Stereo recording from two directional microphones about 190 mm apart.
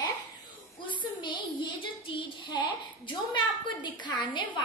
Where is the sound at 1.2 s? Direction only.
25° left (ahead or behind).